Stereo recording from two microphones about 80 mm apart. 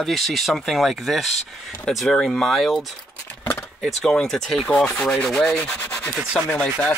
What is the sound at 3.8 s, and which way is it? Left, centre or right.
Speech, centre.